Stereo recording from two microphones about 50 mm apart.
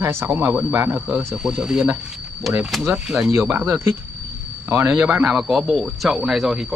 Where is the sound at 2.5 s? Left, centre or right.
Centre.